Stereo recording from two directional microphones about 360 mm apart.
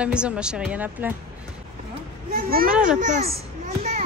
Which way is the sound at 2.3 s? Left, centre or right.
Right.